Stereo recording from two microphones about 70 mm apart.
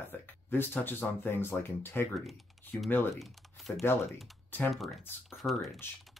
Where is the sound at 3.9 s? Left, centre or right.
Left.